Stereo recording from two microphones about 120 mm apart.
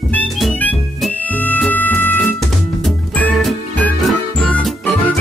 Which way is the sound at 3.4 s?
5° left (ahead or behind).